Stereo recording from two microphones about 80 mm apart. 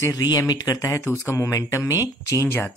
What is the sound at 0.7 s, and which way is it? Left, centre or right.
Speech, left.